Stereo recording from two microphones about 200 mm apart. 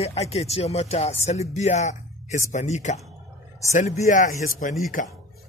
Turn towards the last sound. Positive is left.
turn(degrees=40)  # may be behind; listen again after turning